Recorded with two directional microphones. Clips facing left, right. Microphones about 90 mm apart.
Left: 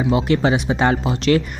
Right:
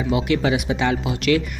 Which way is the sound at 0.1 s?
35° left (ahead or behind).